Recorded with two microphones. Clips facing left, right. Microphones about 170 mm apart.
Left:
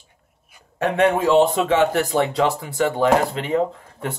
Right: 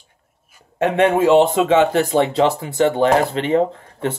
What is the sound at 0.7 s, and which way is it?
A man's voice, 20° right (ahead or behind).